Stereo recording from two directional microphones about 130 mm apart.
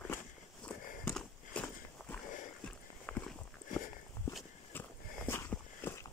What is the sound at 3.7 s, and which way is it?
Walk, 90° left.